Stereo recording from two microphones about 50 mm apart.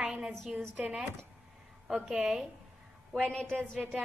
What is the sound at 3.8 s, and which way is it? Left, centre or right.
Music, right.